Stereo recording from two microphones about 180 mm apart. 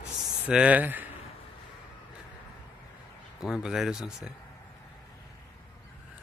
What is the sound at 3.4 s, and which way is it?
Speech, 5° right (ahead or behind).